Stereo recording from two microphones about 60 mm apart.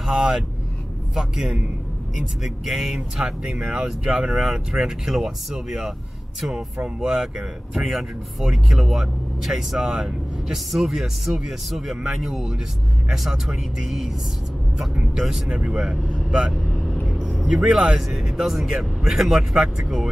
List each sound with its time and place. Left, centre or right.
0.0 s speech: centre
16.8 s vehicle: centre
17.4 s speech: centre